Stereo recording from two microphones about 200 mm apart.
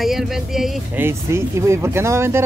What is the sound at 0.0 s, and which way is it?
Speech, centre (ahead or behind).